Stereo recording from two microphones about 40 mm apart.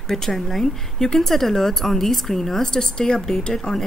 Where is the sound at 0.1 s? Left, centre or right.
Centre.